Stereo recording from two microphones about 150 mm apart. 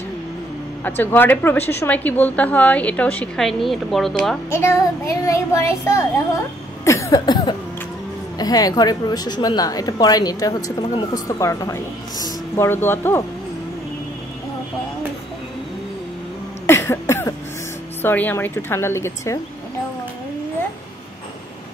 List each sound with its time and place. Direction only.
0.8 s a woman's voice: 10° left (ahead or behind)
4.5 s a woman's voice: 15° left (ahead or behind)
6.8 s cough: 20° left (ahead or behind)
8.4 s a woman's voice: 25° left (ahead or behind)
16.6 s cough: 15° left (ahead or behind)
18.0 s a woman's voice: 15° left (ahead or behind)